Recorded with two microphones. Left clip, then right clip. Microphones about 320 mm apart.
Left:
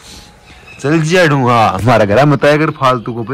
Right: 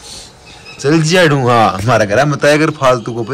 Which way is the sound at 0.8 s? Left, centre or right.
Centre.